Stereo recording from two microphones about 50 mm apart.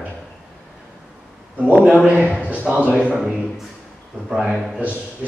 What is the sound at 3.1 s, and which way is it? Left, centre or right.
Speech, centre.